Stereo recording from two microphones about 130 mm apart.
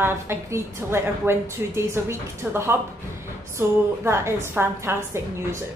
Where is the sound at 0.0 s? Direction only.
20° right (ahead or behind).